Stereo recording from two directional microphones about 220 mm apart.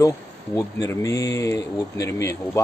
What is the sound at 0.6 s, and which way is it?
Speech, 15° left (ahead or behind).